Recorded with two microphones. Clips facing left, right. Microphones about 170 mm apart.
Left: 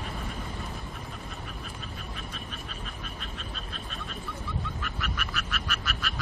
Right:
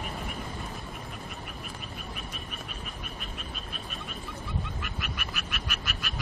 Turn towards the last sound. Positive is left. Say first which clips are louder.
# left 3 dB
turn(degrees=-15)  # may be behind; listen again after turning